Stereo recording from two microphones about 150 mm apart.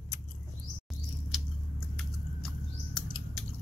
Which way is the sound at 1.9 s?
5° left (ahead or behind).